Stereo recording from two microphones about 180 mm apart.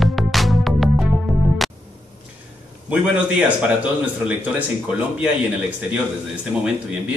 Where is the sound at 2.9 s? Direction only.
10° right (ahead or behind).